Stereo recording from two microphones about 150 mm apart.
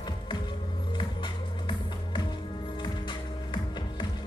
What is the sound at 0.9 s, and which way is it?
Music, 30° left (ahead or behind).